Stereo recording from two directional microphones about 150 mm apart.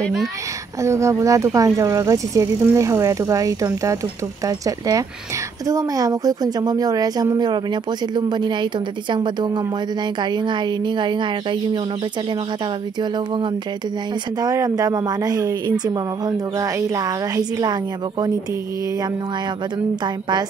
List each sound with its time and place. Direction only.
0.8 s a woman's voice: 20° right (ahead or behind)
14.4 s a woman's voice: 20° right (ahead or behind)